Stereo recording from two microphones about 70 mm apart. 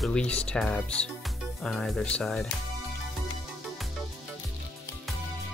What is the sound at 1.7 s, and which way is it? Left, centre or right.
Speech, centre.